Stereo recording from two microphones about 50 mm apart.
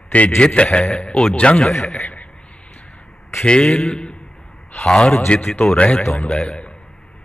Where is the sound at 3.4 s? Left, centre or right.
Left.